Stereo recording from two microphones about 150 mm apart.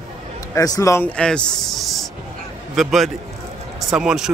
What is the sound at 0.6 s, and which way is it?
Speech, 25° left (ahead or behind).